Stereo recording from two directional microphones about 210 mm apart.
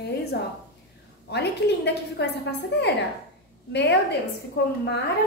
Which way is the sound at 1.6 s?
50° left (ahead or behind).